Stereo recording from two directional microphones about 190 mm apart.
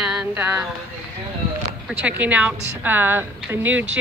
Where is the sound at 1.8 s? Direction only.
5° right (ahead or behind).